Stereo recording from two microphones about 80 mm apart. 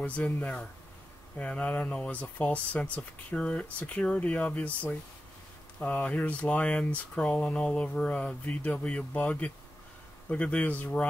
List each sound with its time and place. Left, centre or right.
0.0 s speech: centre